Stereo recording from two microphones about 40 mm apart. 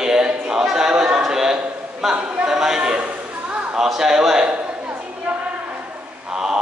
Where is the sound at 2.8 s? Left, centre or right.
Right.